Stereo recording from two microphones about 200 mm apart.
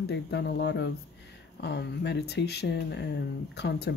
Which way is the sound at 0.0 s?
60° left (ahead or behind).